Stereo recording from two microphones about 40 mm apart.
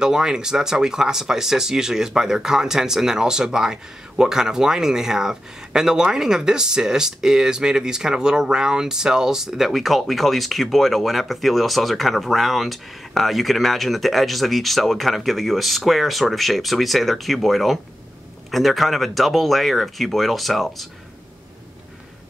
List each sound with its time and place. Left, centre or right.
0.0 s speech: centre